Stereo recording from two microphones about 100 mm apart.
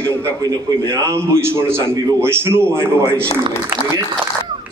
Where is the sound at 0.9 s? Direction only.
25° right (ahead or behind).